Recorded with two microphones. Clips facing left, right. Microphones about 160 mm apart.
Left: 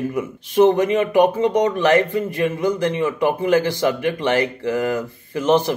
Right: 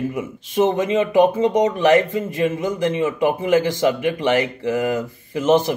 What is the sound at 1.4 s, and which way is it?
A man's voice, 15° right (ahead or behind).